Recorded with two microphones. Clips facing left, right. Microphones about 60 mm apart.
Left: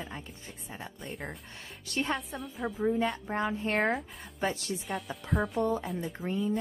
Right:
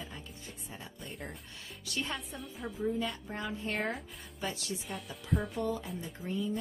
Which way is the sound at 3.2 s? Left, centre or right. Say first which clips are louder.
Left 7 dB; left.